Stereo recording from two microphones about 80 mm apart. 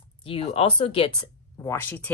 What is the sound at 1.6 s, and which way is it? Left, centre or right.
Speech, left.